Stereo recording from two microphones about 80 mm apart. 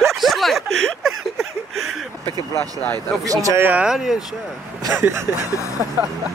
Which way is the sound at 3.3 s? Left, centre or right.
Right.